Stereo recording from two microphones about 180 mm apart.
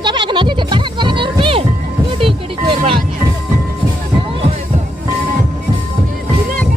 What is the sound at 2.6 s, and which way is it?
Music, 30° right (ahead or behind).